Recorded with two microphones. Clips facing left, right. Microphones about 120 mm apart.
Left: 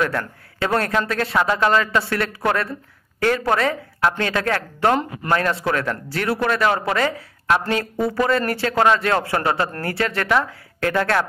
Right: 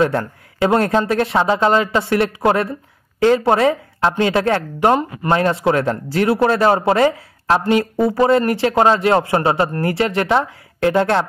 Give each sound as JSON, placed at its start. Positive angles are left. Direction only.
{"t": 0.0, "sound": "speech", "side_deg": -25}
{"t": 4.7, "sound": "speech", "side_deg": -15}
{"t": 5.3, "sound": "speech", "side_deg": -25}